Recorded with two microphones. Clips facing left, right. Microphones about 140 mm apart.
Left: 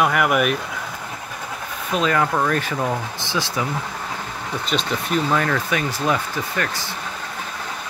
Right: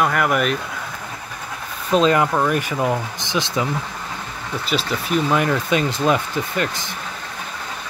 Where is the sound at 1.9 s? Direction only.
25° right (ahead or behind).